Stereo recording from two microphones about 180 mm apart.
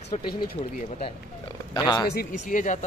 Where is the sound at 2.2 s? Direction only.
45° left (ahead or behind).